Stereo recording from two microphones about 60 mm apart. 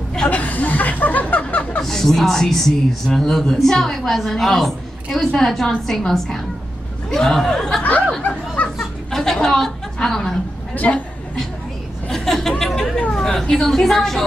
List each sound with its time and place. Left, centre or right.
0.3 s chuckle: left
1.8 s speech: centre
7.8 s a sound: left
8.7 s a sound: centre
10.7 s a man's voice: left
12.1 s chatter: centre
13.1 s speech: centre